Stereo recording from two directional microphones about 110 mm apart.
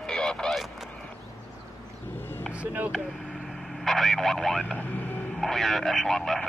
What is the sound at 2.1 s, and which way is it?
Music, 20° left (ahead or behind).